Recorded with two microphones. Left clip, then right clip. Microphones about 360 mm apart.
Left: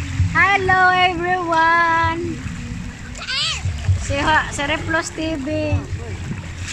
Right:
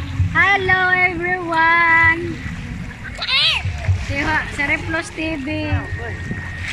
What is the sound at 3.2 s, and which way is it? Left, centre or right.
Splash, centre.